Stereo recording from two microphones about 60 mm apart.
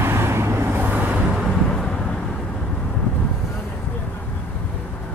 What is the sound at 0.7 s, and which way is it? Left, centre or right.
Vehicle, right.